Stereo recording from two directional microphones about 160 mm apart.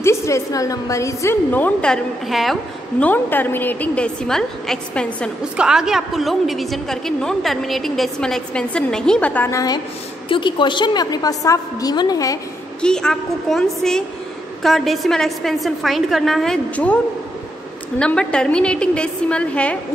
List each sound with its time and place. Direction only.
0.0 s a woman's voice: 20° left (ahead or behind)
10.2 s a woman's voice: 30° left (ahead or behind)
12.8 s a woman's voice: 5° left (ahead or behind)